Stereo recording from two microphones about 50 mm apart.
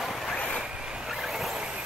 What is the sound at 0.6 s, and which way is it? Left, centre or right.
Vehicle, centre.